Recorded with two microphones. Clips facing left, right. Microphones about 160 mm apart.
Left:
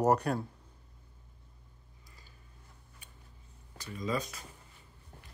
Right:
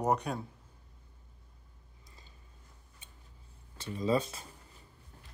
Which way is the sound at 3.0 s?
20° right (ahead or behind).